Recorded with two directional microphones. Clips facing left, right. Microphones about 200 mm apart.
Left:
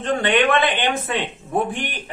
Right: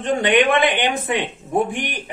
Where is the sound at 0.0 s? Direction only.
15° right (ahead or behind).